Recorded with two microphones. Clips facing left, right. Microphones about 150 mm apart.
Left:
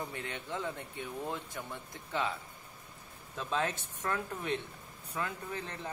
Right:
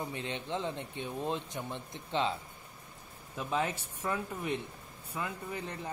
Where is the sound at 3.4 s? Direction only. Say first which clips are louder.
Right 1 dB; 15° right (ahead or behind).